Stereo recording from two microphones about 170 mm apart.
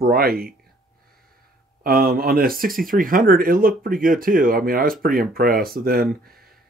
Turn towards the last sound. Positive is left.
turn(degrees=-60)  # may be behind; listen again after turning